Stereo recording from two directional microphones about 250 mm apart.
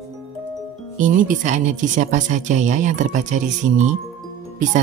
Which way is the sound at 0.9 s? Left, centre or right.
Right.